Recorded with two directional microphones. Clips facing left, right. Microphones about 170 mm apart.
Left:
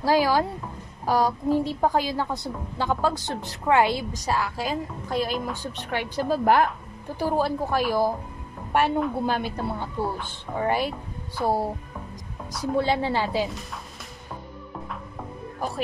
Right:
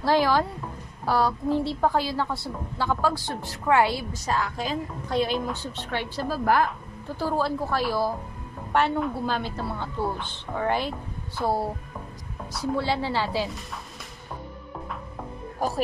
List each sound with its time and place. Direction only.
0.0 s a woman's voice: 10° left (ahead or behind)
5.6 s a woman's voice: 15° left (ahead or behind)
12.7 s a woman's voice: 15° left (ahead or behind)